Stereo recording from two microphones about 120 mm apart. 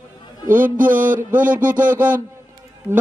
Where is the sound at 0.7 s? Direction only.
90° right.